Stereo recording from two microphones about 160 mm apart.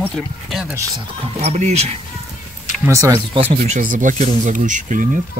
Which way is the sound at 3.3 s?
35° right (ahead or behind).